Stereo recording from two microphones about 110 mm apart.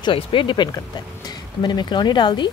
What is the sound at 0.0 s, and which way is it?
Speech, 50° left (ahead or behind).